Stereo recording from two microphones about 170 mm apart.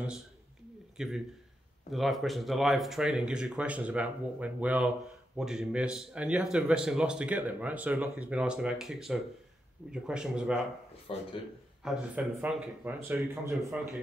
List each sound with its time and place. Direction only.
0.9 s a man's voice: centre (ahead or behind)
11.1 s speech: 35° left (ahead or behind)
11.8 s speech: 5° right (ahead or behind)